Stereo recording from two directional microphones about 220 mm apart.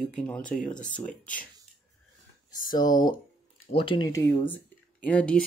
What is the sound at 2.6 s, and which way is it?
Speech, 20° left (ahead or behind).